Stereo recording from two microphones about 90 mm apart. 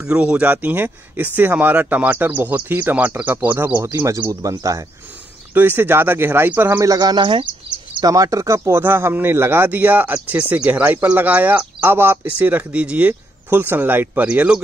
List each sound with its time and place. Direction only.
0.0 s speech: 10° right (ahead or behind)
4.3 s speech: 40° right (ahead or behind)
5.5 s speech: 20° right (ahead or behind)
6.8 s speech: 45° right (ahead or behind); by 14.6 s 15° right (ahead or behind)